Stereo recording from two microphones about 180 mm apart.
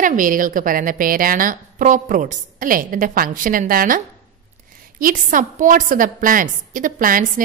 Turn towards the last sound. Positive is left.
turn(degrees=-50)  # may be behind; listen again after turning